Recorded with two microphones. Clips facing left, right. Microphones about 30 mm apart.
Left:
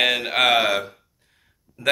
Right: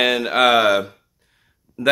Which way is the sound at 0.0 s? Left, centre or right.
Centre.